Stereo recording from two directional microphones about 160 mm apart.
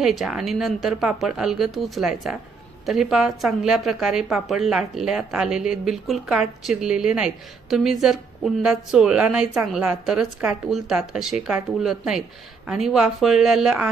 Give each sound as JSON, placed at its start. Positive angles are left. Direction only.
{"t": 0.0, "sound": "a woman's voice", "side_deg": 0}